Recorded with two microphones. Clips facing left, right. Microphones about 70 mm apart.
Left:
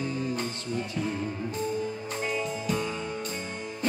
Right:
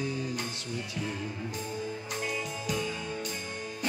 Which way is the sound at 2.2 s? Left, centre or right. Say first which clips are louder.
Left 5 dB; left.